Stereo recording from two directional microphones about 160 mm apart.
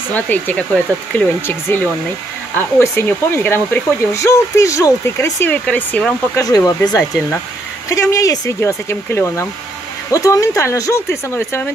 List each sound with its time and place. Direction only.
0.1 s speech: 10° left (ahead or behind)
6.4 s speech: 25° left (ahead or behind)